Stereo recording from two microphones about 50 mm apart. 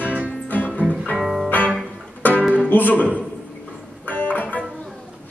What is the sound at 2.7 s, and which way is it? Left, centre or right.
Speech, left.